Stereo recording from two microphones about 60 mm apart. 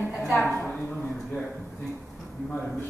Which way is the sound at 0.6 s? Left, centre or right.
Centre.